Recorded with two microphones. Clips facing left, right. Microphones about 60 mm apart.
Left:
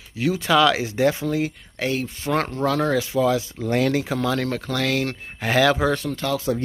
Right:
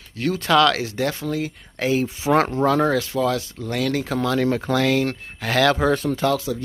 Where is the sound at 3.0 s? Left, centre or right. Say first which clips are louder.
Left 2 dB; centre.